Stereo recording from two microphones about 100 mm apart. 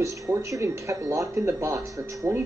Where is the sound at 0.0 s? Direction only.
30° right (ahead or behind).